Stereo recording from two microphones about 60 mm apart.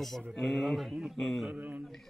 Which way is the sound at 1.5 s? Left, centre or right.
Right.